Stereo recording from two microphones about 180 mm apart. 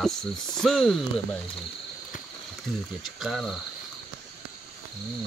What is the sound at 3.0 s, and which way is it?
Cricket, centre (ahead or behind).